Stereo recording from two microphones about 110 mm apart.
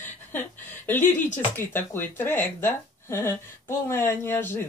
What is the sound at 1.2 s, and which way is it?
Speech, 20° left (ahead or behind).